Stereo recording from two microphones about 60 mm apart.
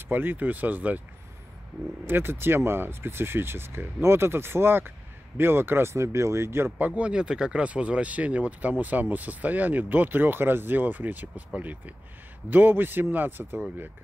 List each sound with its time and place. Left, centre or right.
0.1 s speech: right
2.0 s speech: right
7.0 s speech: centre; by 13.6 s right